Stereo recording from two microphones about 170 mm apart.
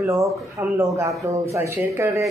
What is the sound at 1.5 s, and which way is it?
Speech, 15° right (ahead or behind).